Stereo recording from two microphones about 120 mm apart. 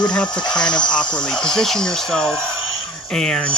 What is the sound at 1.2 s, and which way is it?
Speech, 5° left (ahead or behind).